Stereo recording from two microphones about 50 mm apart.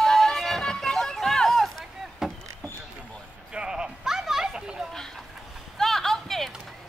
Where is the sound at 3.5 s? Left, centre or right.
Centre.